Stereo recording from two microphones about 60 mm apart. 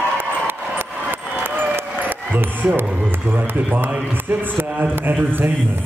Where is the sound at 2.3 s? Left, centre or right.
Right.